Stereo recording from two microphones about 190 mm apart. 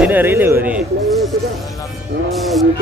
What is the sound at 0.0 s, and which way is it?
Speech, 10° right (ahead or behind).